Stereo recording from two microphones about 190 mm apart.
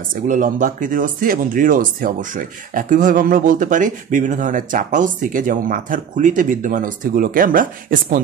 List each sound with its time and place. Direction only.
0.1 s speech: 45° right (ahead or behind)